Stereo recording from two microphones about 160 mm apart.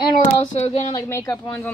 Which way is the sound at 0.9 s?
20° left (ahead or behind).